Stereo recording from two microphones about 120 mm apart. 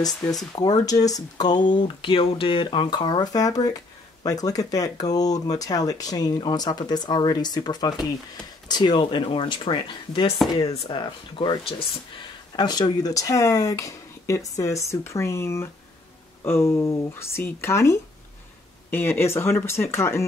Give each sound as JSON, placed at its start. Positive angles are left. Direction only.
{"t": 0.0, "sound": "speech", "side_deg": 30}